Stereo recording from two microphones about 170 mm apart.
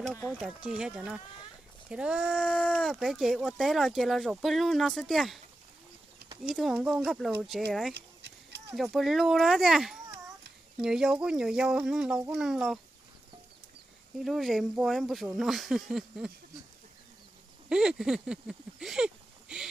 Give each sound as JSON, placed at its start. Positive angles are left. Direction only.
{"t": 0.4, "sound": "speech", "side_deg": -5}
{"t": 6.5, "sound": "speech", "side_deg": 0}
{"t": 7.9, "sound": "a sound", "side_deg": -85}
{"t": 8.7, "sound": "speech", "side_deg": 0}
{"t": 14.2, "sound": "speech", "side_deg": 0}
{"t": 17.6, "sound": "a sound", "side_deg": -5}